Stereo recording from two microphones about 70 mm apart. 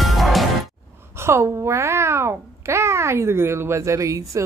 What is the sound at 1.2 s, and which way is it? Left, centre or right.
Babbling, right.